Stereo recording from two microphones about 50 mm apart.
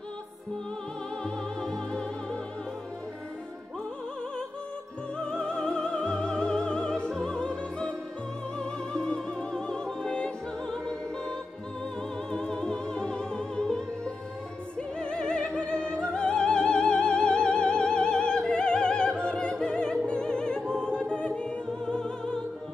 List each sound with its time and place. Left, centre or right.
1.2 s music: centre
5.2 s music: centre
7.1 s opera: centre
8.5 s music: centre
14.8 s opera: centre